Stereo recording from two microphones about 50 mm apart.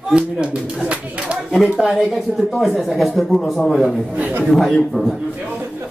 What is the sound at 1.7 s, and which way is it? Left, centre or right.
Speech, centre.